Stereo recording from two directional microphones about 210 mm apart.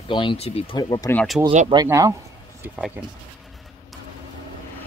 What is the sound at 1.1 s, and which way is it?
Speech, centre (ahead or behind).